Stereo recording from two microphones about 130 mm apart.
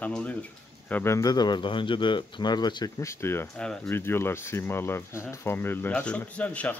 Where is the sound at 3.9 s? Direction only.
15° left (ahead or behind).